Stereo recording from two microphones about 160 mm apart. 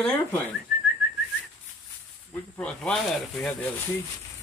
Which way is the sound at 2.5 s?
5° left (ahead or behind).